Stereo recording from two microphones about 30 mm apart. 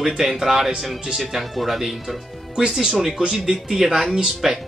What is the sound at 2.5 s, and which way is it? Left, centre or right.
Speech, right.